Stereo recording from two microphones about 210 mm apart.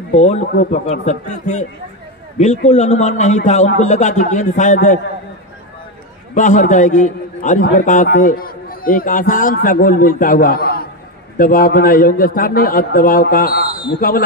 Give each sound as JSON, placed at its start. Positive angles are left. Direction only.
{"t": 0.1, "sound": "a man's voice", "side_deg": 30}
{"t": 2.7, "sound": "a man's voice", "side_deg": 35}
{"t": 6.3, "sound": "a man's voice", "side_deg": 35}